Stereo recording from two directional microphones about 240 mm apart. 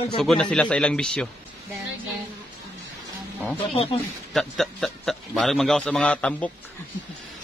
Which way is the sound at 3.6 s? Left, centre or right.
Left.